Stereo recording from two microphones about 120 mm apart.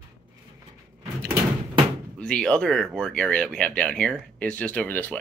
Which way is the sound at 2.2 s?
5° left (ahead or behind).